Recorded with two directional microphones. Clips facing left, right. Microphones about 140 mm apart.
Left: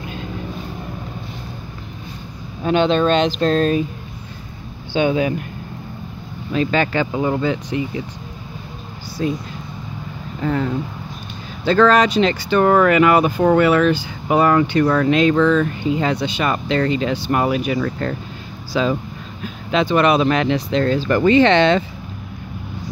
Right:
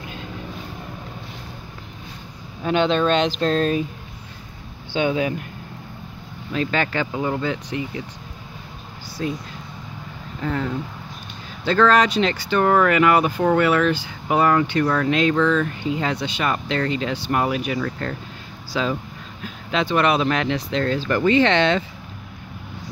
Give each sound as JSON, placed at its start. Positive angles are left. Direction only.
{"t": 2.6, "sound": "speech", "side_deg": 35}
{"t": 6.5, "sound": "speech", "side_deg": 15}
{"t": 9.2, "sound": "speech", "side_deg": 15}
{"t": 11.6, "sound": "speech", "side_deg": 15}